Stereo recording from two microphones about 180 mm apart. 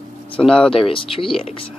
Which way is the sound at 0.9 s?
30° left (ahead or behind).